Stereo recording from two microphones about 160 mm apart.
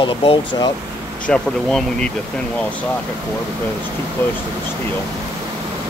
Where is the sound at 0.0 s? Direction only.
30° left (ahead or behind).